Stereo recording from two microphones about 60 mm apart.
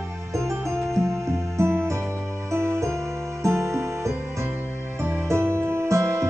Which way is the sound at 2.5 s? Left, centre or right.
Right.